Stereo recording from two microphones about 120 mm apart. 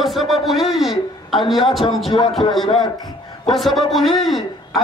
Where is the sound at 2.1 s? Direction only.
40° left (ahead or behind).